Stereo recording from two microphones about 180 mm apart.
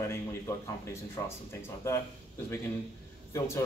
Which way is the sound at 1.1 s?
15° left (ahead or behind).